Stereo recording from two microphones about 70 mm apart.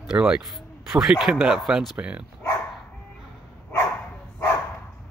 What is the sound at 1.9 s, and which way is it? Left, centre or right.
Speech, right.